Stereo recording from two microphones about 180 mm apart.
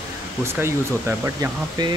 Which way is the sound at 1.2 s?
20° right (ahead or behind).